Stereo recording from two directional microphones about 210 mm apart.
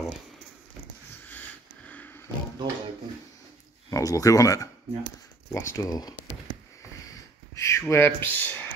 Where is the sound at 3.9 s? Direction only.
15° left (ahead or behind).